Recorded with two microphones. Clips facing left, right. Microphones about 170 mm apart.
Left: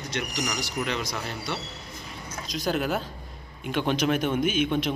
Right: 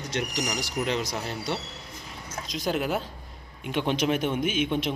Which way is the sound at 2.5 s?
25° right (ahead or behind).